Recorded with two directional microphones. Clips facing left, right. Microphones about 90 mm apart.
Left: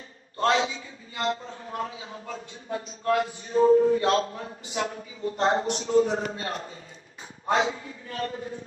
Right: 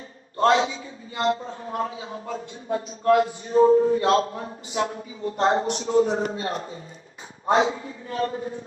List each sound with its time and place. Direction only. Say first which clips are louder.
0.4 s a man's voice: right 4 dB; 30° right (ahead or behind)